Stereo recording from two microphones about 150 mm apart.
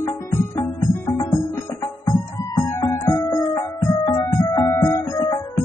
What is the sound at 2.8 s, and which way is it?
Music, 15° left (ahead or behind).